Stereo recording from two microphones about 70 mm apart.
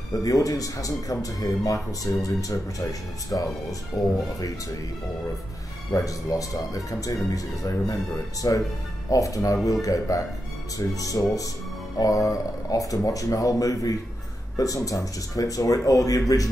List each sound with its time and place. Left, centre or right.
0.2 s speech: left
5.9 s speech: left